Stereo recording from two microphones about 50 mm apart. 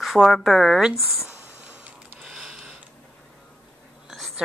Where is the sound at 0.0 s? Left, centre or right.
Centre.